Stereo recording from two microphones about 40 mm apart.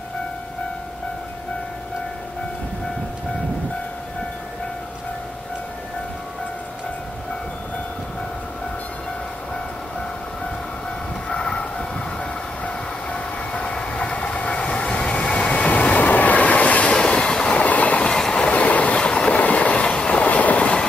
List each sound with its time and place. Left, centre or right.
11.2 s vehicle: left
12.2 s train: left
13.7 s vehicle: centre
14.1 s vehicle: left
14.6 s train: left
15.6 s vehicle: left
16.9 s train: left
17.6 s train: left
18.0 s train: centre
18.5 s vehicle: left
18.9 s train: left
19.4 s train: left
19.7 s train: left
20.2 s train: left